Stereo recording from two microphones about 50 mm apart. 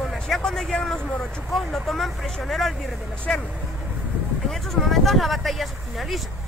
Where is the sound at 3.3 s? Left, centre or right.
Centre.